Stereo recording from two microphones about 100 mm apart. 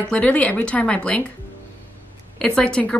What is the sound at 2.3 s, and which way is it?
Speech, 10° left (ahead or behind).